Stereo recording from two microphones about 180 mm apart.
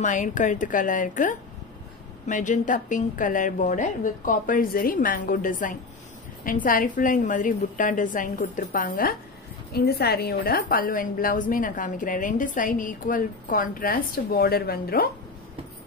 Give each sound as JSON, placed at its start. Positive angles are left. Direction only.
{"t": 0.0, "sound": "a woman's voice", "side_deg": 45}